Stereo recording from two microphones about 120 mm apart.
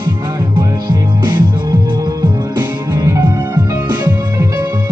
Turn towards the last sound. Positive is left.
turn(degrees=-20)  # may be behind; listen again after turning